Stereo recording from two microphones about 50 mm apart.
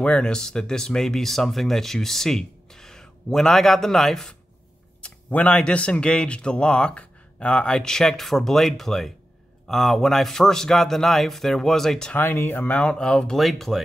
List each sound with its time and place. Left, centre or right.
0.0 s speech: centre
5.0 s speech: left; by 12.1 s centre
12.2 s speech: left
12.7 s speech: left
13.4 s speech: centre